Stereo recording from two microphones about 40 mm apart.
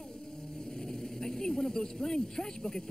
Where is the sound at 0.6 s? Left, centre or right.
Centre.